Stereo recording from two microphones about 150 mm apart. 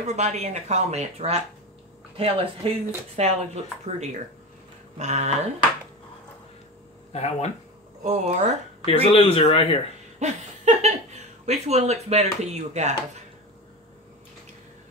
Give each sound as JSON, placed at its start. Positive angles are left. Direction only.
{"t": 0.0, "sound": "speech", "side_deg": -50}
{"t": 7.1, "sound": "speech", "side_deg": 45}
{"t": 8.0, "sound": "speech", "side_deg": -50}
{"t": 8.8, "sound": "speech", "side_deg": 40}
{"t": 10.1, "sound": "speech", "side_deg": -50}